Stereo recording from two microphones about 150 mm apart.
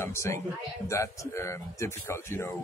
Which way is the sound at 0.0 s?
20° left (ahead or behind).